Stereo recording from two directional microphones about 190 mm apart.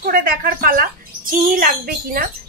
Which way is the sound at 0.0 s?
45° right (ahead or behind).